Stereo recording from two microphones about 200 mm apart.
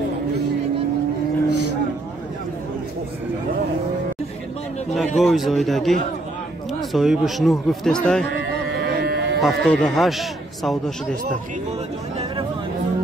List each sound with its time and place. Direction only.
4.9 s a man's voice: centre (ahead or behind)
8.8 s electric shaver: 50° right (ahead or behind)
9.4 s a man's voice: centre (ahead or behind)